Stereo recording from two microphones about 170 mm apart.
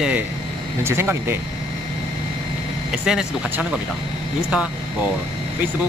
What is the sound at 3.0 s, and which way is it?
Speech, 5° right (ahead or behind).